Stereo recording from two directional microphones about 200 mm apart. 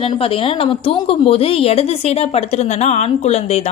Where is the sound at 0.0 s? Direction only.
30° left (ahead or behind).